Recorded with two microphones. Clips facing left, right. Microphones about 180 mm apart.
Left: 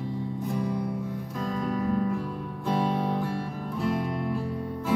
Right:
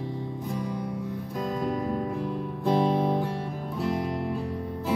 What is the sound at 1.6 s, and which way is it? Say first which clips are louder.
Music: left 3 dB; 30° right (ahead or behind).